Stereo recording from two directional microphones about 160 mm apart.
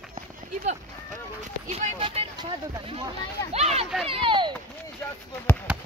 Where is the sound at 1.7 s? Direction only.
35° right (ahead or behind).